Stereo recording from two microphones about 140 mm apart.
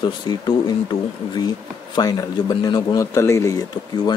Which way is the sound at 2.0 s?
30° left (ahead or behind).